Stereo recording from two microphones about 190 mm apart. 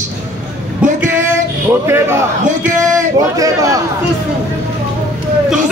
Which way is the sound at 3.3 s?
15° right (ahead or behind).